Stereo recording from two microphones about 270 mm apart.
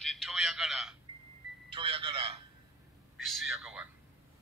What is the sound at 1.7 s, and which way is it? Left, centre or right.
Telephone, centre.